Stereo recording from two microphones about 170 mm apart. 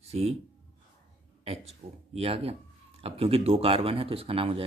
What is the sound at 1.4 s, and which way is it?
Speech, 35° right (ahead or behind).